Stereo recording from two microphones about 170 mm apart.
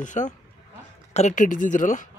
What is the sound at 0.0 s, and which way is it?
Speech, 45° left (ahead or behind).